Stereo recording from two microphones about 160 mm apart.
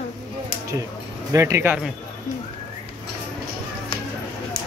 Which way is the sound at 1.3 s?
20° right (ahead or behind).